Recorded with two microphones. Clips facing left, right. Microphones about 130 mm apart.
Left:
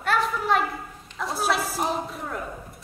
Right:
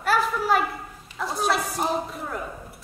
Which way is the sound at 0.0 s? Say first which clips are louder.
Right 1 dB; 5° right (ahead or behind).